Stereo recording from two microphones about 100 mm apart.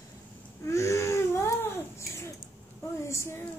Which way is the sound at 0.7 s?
30° left (ahead or behind).